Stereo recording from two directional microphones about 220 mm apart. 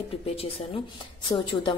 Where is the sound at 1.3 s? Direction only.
20° left (ahead or behind).